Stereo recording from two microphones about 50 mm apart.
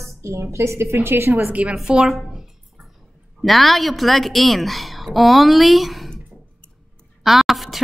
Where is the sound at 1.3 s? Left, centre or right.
Right.